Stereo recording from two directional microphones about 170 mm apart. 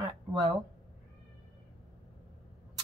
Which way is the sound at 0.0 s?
30° right (ahead or behind).